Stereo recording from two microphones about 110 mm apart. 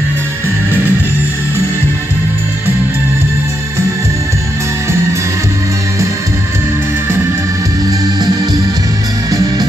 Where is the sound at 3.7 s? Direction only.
25° right (ahead or behind).